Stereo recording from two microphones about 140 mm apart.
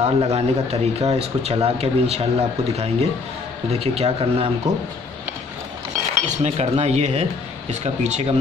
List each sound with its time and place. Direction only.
0.0 s speech: 45° right (ahead or behind)
6.2 s speech: 50° right (ahead or behind)